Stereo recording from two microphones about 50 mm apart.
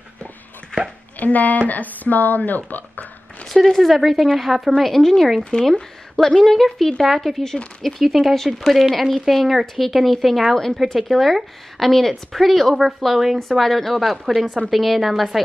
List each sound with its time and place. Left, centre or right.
1.2 s speech: left
3.6 s a woman's voice: centre